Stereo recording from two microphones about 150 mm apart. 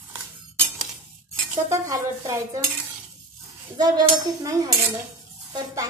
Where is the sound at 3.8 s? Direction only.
25° right (ahead or behind).